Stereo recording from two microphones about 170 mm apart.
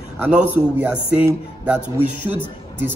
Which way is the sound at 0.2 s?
10° right (ahead or behind).